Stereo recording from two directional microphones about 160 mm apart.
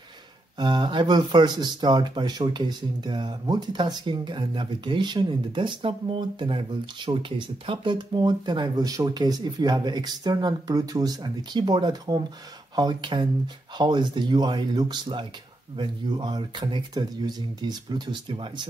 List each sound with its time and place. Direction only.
0.6 s speech: 30° right (ahead or behind)